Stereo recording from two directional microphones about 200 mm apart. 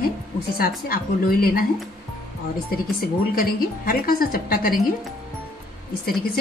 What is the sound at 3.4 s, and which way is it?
Speech, 45° left (ahead or behind).